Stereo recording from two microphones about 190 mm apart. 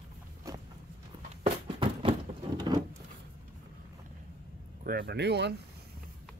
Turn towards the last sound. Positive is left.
turn(degrees=-65)  # may be behind; listen again after turning